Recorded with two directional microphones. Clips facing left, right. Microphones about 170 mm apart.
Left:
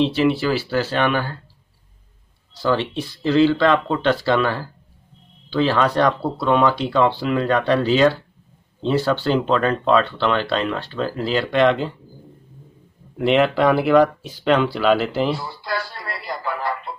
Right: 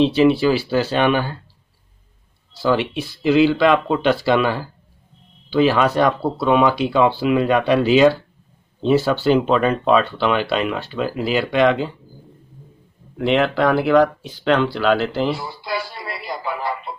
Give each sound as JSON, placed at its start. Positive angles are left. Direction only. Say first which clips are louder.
{"t": 0.0, "sound": "speech", "louder": "right 4 dB", "side_deg": -15}
{"t": 2.5, "sound": "speech", "louder": "right 2 dB", "side_deg": -10}
{"t": 13.2, "sound": "speech", "louder": "left 1 dB", "side_deg": 5}
{"t": 15.3, "sound": "radio", "louder": "right 1 dB", "side_deg": -10}